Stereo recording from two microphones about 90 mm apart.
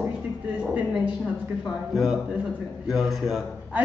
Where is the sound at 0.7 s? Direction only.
15° right (ahead or behind).